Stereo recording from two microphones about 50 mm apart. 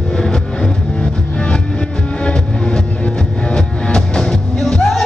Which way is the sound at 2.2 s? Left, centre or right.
Left.